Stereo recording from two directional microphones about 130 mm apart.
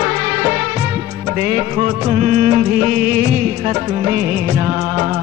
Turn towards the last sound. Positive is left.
turn(degrees=-10)  # may be behind; listen again after turning